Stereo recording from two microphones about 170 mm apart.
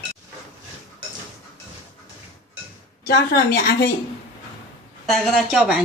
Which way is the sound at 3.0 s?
70° left (ahead or behind).